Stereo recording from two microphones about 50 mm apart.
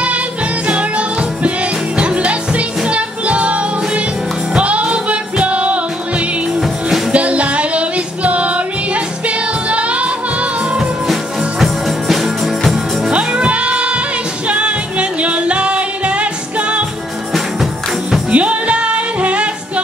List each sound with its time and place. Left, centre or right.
0.7 s music: right
4.6 s music: right
7.1 s music: right
9.7 s music: right
13.1 s music: right
18.3 s music: right